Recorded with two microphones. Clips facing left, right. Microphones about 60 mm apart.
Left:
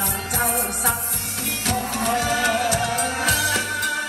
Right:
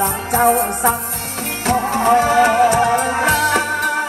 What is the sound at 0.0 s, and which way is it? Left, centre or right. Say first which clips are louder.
Music: right 10 dB; right.